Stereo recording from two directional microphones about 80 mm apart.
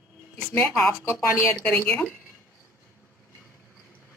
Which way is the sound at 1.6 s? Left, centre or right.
Centre.